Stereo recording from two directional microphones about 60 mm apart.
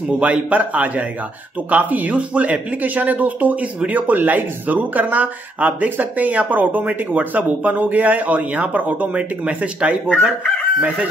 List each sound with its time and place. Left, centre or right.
0.2 s speech: right